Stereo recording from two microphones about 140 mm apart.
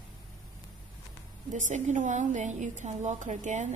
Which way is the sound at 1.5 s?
60° right (ahead or behind).